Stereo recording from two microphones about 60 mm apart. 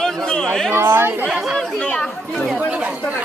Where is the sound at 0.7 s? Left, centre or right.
Right.